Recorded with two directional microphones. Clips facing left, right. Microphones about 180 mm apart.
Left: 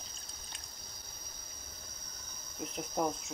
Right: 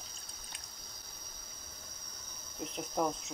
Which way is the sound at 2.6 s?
5° left (ahead or behind).